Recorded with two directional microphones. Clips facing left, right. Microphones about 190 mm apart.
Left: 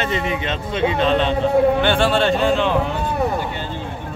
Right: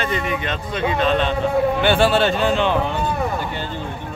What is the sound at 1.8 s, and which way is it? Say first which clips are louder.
Speech: right 1 dB; 5° right (ahead or behind).